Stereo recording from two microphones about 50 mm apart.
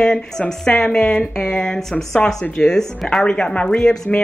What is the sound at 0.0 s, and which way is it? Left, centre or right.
Speech, centre.